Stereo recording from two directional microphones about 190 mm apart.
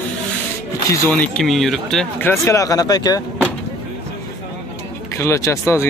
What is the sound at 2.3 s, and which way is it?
Speech, 15° left (ahead or behind).